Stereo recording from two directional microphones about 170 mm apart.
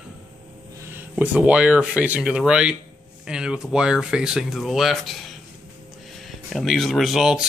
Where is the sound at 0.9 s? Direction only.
10° right (ahead or behind).